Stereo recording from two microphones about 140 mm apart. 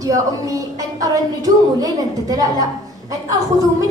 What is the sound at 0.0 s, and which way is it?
A woman's voice, 25° right (ahead or behind).